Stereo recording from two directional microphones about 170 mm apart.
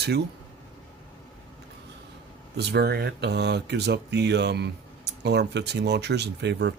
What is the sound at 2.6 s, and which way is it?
Speech, 70° right (ahead or behind).